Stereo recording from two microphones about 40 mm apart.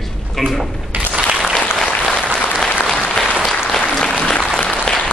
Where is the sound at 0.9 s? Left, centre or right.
Right.